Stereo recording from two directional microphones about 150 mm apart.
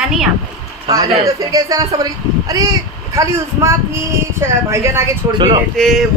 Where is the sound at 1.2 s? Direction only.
20° right (ahead or behind).